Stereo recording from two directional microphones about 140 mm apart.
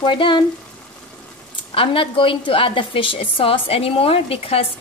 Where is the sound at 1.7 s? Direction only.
40° left (ahead or behind).